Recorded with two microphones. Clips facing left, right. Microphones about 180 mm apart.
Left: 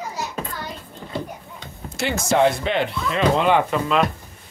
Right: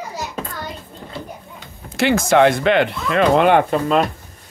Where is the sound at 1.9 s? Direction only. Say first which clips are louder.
Right 5 dB; 85° right; by 3.6 s 60° right (ahead or behind).